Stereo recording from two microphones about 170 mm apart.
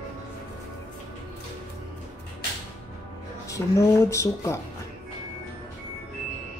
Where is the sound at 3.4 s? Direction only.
20° left (ahead or behind).